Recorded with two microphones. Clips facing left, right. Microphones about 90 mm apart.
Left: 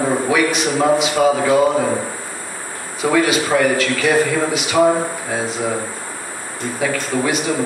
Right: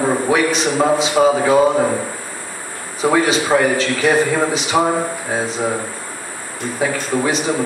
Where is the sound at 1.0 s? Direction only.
30° right (ahead or behind).